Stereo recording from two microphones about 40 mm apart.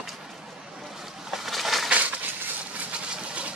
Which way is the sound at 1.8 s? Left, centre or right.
Right.